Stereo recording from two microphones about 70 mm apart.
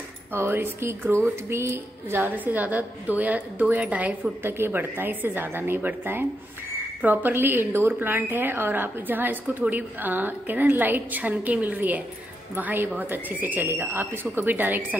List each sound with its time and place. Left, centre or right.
0.3 s a woman's voice: right